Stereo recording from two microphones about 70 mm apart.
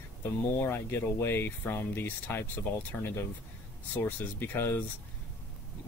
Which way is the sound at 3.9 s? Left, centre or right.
Left.